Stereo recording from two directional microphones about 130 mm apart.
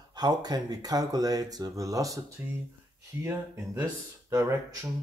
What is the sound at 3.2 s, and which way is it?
Speech, 20° right (ahead or behind).